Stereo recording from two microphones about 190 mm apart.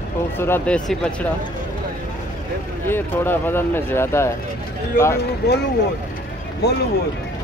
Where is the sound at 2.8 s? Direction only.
10° left (ahead or behind).